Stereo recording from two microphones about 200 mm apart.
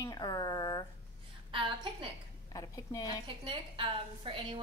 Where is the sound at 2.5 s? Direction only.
20° left (ahead or behind).